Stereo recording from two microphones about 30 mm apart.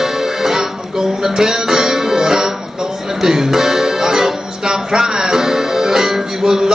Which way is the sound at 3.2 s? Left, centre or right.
Centre.